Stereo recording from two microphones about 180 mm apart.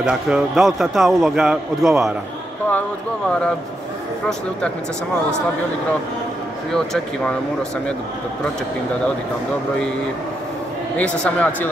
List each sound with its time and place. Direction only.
0.0 s a man's voice: 5° right (ahead or behind)
4.3 s a man's voice: 5° left (ahead or behind)
6.7 s a man's voice: 5° left (ahead or behind)
11.0 s speech: 10° left (ahead or behind)